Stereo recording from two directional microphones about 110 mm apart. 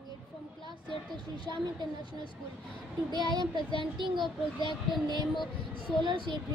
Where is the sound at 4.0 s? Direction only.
45° right (ahead or behind).